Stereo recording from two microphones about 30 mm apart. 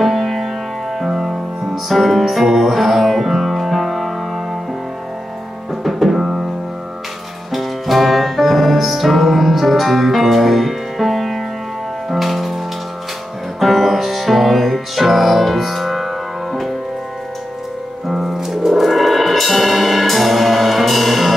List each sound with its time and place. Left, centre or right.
0.0 s music: centre
5.9 s music: centre
7.5 s music: centre
13.6 s music: centre
18.0 s music: centre